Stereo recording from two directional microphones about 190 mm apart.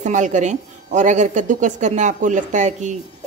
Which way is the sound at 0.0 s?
40° right (ahead or behind).